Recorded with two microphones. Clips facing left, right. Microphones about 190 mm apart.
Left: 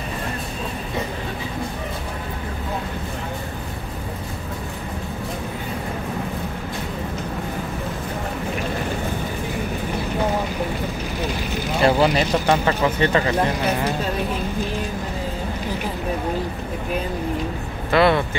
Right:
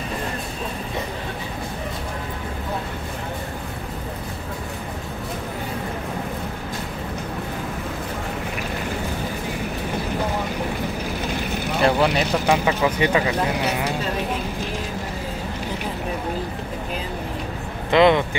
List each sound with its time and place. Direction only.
11.8 s speech: centre (ahead or behind)
17.9 s speech: 20° right (ahead or behind)